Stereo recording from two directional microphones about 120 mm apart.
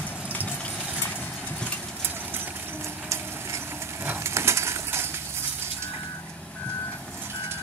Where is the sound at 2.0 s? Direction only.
15° right (ahead or behind).